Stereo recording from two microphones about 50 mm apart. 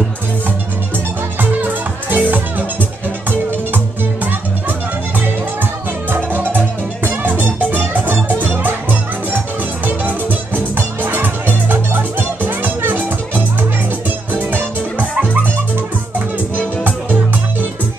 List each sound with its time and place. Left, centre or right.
1.4 s music: right
9.8 s music: right
14.3 s music: right
16.5 s music: right